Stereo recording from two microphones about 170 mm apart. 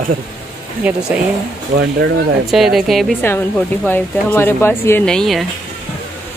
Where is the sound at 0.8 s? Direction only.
10° right (ahead or behind).